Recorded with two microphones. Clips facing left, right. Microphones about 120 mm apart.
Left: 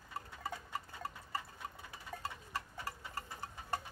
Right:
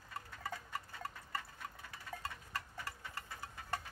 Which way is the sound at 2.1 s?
5° left (ahead or behind).